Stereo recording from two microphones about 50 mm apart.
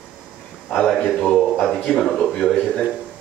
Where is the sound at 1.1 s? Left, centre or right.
Centre.